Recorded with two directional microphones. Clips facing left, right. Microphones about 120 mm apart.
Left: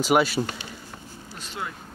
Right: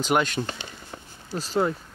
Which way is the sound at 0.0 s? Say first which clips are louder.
Left 3 dB; 5° left (ahead or behind).